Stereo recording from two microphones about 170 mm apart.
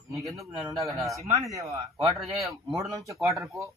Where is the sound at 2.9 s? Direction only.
20° right (ahead or behind).